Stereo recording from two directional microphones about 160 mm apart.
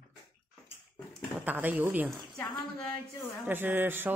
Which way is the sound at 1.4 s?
10° right (ahead or behind).